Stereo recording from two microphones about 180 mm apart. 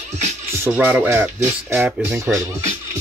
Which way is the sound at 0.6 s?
10° right (ahead or behind).